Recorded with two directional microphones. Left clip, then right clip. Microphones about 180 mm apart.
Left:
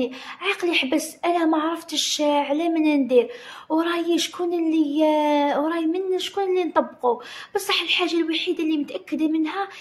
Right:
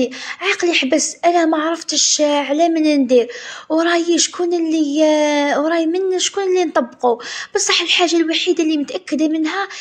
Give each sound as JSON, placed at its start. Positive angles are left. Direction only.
{"t": 0.0, "sound": "speech", "side_deg": -20}